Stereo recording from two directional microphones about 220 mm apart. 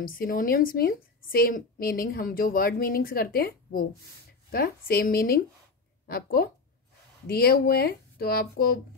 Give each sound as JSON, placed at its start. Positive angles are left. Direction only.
{"t": 0.0, "sound": "a woman's voice", "side_deg": 40}